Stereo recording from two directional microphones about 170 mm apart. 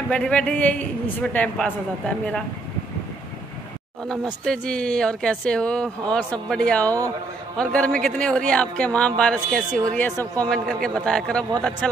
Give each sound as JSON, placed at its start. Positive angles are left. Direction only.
{"t": 0.1, "sound": "a man's voice", "side_deg": 5}
{"t": 4.1, "sound": "a man's voice", "side_deg": 5}